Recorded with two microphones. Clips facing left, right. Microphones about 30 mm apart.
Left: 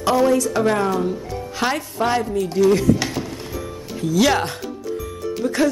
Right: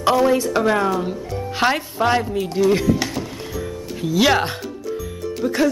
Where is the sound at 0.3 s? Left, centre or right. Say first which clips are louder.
Even; right.